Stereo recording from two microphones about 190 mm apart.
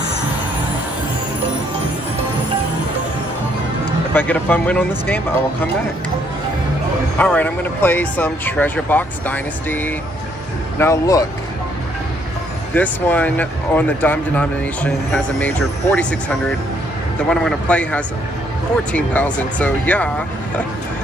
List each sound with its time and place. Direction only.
4.1 s speech: 10° left (ahead or behind)
7.2 s speech: 10° left (ahead or behind)
12.7 s speech: 10° left (ahead or behind)
17.3 s speech: 5° left (ahead or behind)